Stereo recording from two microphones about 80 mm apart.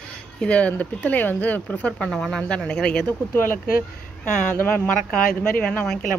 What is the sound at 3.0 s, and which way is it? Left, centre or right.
Speech, left.